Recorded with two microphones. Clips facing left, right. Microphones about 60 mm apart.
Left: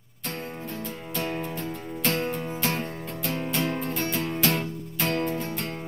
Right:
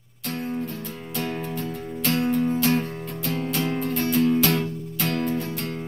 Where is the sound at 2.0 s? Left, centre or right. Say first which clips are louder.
Right 6 dB; centre.